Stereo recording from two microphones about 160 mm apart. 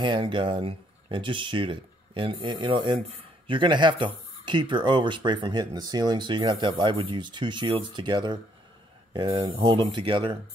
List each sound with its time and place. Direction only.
0.0 s speech: 30° right (ahead or behind)